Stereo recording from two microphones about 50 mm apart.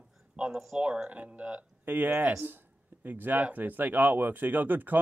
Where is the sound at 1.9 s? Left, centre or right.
Right.